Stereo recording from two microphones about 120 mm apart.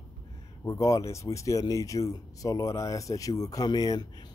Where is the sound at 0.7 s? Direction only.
30° left (ahead or behind).